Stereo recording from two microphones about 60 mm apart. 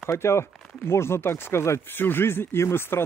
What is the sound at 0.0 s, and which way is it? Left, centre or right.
Speech, left.